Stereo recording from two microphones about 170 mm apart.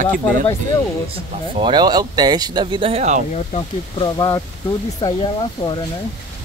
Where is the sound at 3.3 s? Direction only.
35° left (ahead or behind).